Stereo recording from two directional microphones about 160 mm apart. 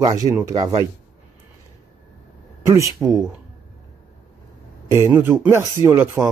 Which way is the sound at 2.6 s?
15° right (ahead or behind).